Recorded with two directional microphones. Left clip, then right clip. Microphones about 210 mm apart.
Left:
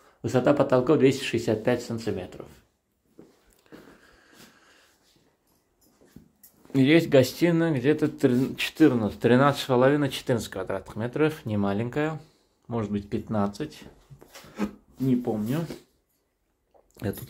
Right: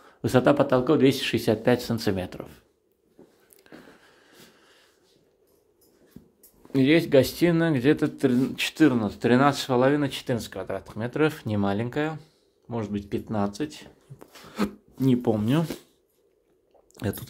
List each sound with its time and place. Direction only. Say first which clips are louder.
0.0 s speech: right 3 dB; 20° right (ahead or behind)
3.6 s a sound: right 1 dB; 15° right (ahead or behind)
6.7 s speech: even; 5° right (ahead or behind)
8.2 s speech: even; 5° right (ahead or behind); by 13.8 s 20° right (ahead or behind)
14.1 s speech: right 4 dB; 40° right (ahead or behind)
16.9 s speech: right 1 dB; 15° right (ahead or behind)